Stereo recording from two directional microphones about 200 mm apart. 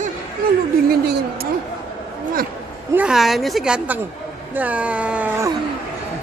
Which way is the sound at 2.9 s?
5° right (ahead or behind).